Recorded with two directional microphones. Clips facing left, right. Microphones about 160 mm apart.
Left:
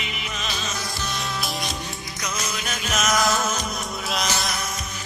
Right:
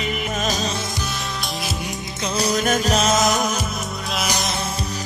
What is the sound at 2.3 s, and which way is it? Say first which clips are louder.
Music: right 14 dB; 40° right (ahead or behind).